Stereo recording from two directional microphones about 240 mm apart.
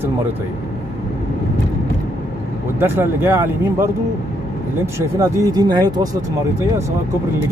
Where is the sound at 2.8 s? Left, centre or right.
Centre.